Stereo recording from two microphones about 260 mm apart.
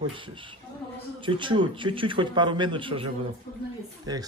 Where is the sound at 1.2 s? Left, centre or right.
Centre.